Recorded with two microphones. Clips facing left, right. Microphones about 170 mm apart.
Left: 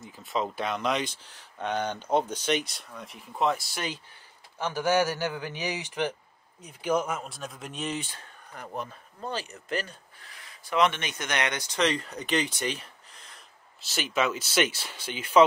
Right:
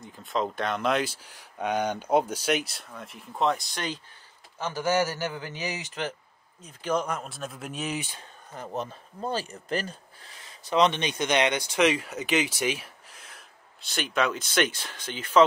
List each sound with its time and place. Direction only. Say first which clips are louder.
0.0 s a man's voice: right 1 dB; 5° left (ahead or behind)
8.1 s speech: right 2 dB; 20° right (ahead or behind)
9.3 s speech: right 3 dB; 35° right (ahead or behind)
10.2 s a sound: right 1 dB; 25° right (ahead or behind)
10.7 s speech: right 2 dB; 20° right (ahead or behind)
11.5 s speech: right 4 dB; 10° right (ahead or behind); by 15.4 s 10° left (ahead or behind)